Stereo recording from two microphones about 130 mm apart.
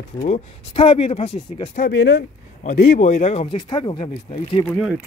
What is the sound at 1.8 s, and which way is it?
Speech, 90° left.